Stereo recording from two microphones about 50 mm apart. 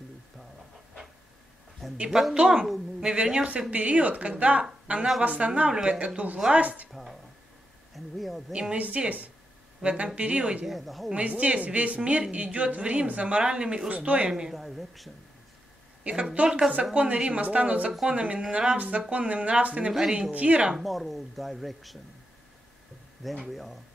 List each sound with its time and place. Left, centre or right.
2.0 s a woman's voice: centre
3.7 s a woman's voice: right
6.9 s a sound: centre
8.7 s speech: right
9.8 s a woman's voice: centre
10.6 s speech: centre
11.1 s a woman's voice: right
14.5 s speech: centre
16.0 s a woman's voice: right
19.9 s a woman's voice: centre
20.2 s a woman's voice: right
20.7 s speech: centre
23.5 s speech: centre